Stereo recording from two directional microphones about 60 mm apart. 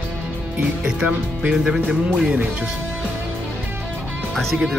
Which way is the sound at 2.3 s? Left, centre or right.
Centre.